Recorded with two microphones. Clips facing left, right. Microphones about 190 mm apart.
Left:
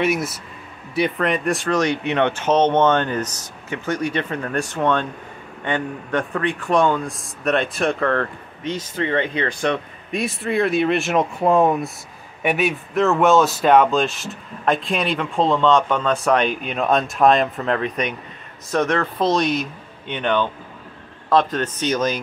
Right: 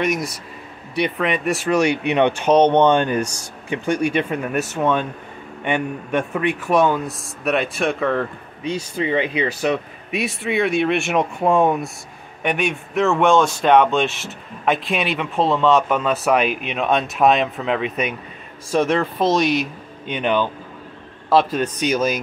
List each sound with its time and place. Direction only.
0.0 s a man's voice: 5° left (ahead or behind)
18.9 s speech: 20° right (ahead or behind)
19.3 s a man's voice: centre (ahead or behind)
20.1 s speech: 10° right (ahead or behind)